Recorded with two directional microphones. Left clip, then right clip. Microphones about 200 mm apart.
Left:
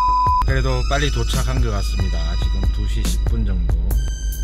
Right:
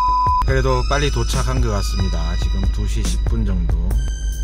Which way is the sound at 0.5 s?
25° right (ahead or behind).